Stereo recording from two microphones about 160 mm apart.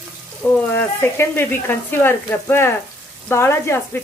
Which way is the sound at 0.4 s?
15° left (ahead or behind).